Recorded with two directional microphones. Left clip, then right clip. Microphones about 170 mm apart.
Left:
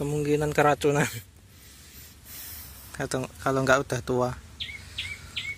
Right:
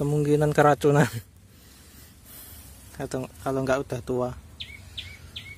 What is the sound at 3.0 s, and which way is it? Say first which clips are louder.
Speech: left 2 dB; 5° right (ahead or behind).